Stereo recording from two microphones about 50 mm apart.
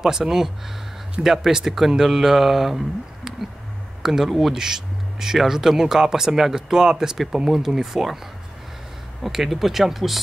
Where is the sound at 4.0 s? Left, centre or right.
Centre.